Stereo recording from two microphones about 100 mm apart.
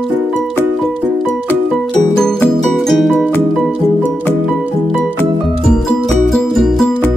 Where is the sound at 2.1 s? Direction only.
5° left (ahead or behind).